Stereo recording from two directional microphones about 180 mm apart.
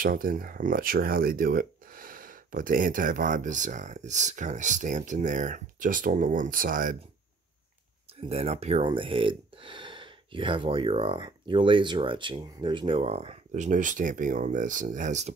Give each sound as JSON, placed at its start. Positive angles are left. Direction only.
{"t": 0.0, "sound": "speech", "side_deg": -50}
{"t": 8.3, "sound": "speech", "side_deg": -35}